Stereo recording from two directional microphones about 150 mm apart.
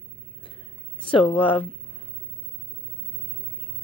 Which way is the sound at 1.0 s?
35° left (ahead or behind).